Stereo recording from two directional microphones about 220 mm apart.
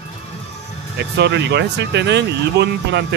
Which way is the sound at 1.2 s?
50° right (ahead or behind).